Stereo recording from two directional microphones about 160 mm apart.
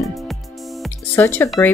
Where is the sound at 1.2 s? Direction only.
15° left (ahead or behind).